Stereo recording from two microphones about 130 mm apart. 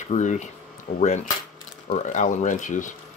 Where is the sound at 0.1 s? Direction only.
70° left (ahead or behind).